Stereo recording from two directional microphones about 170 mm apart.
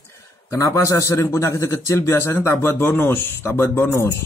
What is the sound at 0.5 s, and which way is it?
A man's voice, 20° left (ahead or behind).